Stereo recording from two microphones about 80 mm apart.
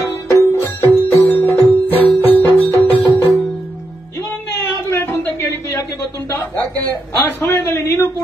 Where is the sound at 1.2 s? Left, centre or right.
Left.